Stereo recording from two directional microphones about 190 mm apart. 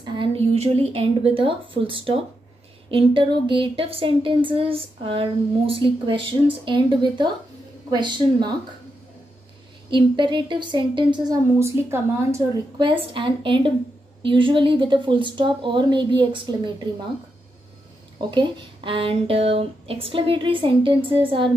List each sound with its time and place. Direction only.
0.0 s a woman's voice: 25° right (ahead or behind)
9.8 s speech: 25° right (ahead or behind)
12.7 s speech: 25° right (ahead or behind)
18.3 s speech: 25° right (ahead or behind)